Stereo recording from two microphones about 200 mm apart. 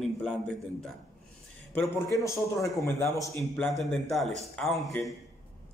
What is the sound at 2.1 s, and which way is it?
A man's voice, 15° left (ahead or behind).